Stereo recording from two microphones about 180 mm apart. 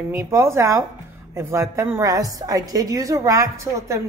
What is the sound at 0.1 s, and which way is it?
A woman's voice, 15° right (ahead or behind).